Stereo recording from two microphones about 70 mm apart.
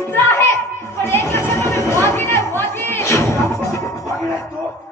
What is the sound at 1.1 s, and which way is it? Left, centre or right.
Chatter, left.